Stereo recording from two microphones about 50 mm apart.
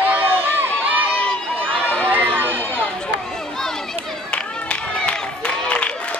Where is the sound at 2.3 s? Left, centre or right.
Right.